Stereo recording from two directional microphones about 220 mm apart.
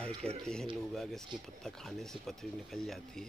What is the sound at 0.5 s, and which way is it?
Speech, centre (ahead or behind).